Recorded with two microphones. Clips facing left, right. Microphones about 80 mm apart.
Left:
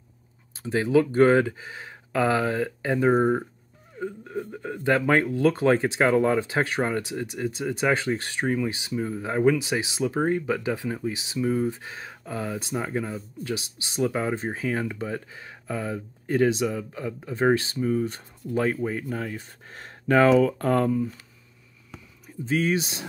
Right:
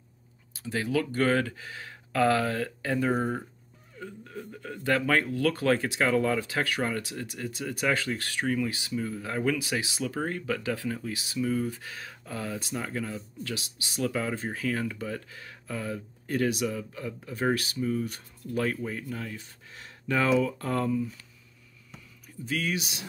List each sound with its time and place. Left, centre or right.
0.6 s speech: left
22.4 s speech: left